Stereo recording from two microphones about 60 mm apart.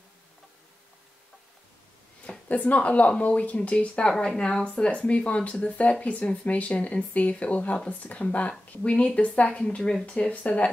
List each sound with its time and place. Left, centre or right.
2.4 s a woman's voice: left